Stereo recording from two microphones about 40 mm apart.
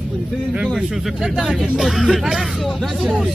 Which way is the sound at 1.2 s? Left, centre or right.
Centre.